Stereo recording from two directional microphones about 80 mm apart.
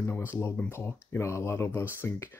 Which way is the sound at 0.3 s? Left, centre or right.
Left.